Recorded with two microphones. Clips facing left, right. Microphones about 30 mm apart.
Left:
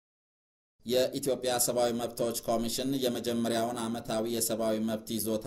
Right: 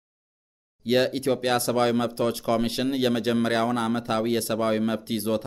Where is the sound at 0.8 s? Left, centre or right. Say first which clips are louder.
Right 6 dB; right.